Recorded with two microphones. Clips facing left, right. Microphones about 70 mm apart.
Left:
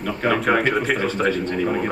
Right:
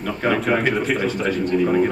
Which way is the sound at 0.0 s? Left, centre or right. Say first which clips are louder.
Even; centre.